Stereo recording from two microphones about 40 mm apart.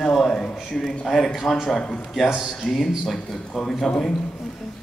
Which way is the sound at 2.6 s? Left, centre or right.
Centre.